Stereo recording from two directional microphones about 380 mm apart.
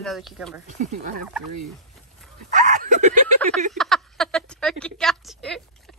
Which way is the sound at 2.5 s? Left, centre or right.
Centre.